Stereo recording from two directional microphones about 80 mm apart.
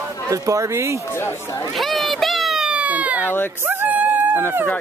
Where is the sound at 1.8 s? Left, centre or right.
Centre; by 4.4 s right.